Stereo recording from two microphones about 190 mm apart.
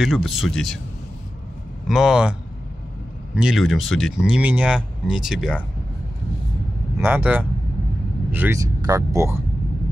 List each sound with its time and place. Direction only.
0.0 s speech: centre (ahead or behind)
1.9 s speech: centre (ahead or behind)
3.3 s speech: centre (ahead or behind)
7.0 s speech: 10° right (ahead or behind)